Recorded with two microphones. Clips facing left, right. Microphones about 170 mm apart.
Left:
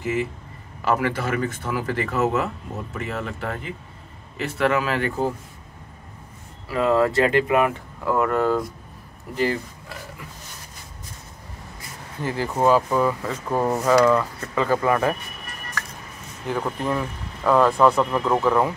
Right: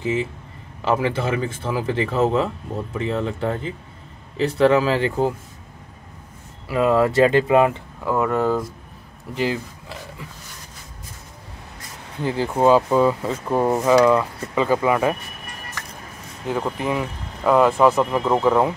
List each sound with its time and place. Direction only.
0.8 s speech: 25° right (ahead or behind)
6.7 s speech: 20° right (ahead or behind)
8.1 s speech: centre (ahead or behind)
9.3 s speech: 15° right (ahead or behind)
12.2 s speech: 20° right (ahead or behind)
16.4 s speech: 10° right (ahead or behind)
18.2 s speech: 15° right (ahead or behind)